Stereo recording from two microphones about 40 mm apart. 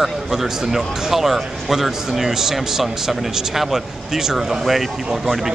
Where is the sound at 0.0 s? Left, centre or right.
Centre.